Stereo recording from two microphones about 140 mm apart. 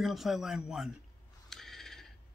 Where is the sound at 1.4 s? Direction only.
Centre (ahead or behind).